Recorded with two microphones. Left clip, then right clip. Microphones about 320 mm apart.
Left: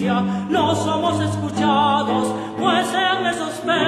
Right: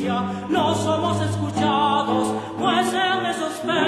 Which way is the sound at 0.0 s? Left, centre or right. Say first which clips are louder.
Left 3 dB; left.